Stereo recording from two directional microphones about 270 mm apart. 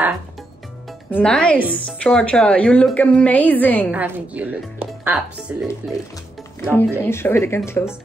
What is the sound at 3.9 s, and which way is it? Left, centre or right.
Speech, centre.